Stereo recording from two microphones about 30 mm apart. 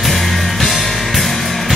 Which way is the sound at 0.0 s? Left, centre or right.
Centre.